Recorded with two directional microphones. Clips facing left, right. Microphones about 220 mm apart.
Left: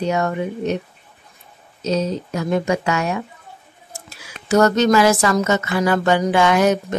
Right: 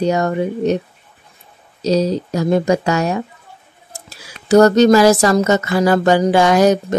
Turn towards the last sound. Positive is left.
turn(degrees=-35)  # may be behind; listen again after turning